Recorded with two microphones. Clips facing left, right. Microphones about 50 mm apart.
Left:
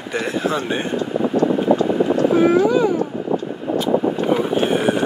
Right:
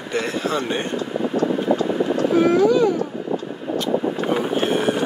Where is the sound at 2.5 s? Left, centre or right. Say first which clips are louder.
Even; centre.